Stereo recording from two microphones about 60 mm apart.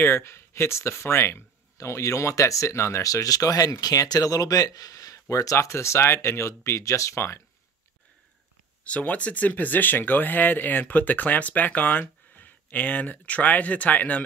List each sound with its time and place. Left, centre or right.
0.0 s speech: left
5.3 s speech: left
8.8 s speech: left